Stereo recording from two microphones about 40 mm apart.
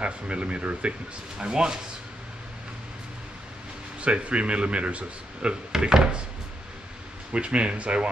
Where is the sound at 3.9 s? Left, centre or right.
Right.